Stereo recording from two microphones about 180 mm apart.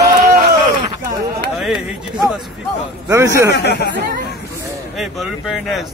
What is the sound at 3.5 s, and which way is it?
Speech, 65° left (ahead or behind).